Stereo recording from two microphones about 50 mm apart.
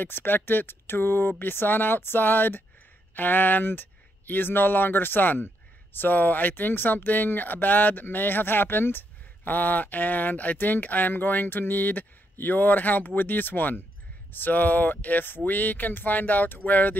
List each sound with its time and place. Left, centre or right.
0.0 s speech: left